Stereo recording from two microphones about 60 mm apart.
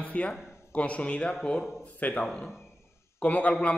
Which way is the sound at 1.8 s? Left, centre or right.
Left.